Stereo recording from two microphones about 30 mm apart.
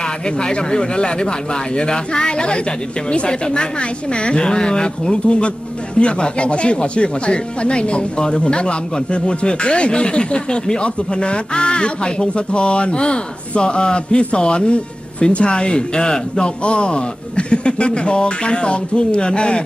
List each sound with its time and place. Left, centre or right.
0.4 s speech: left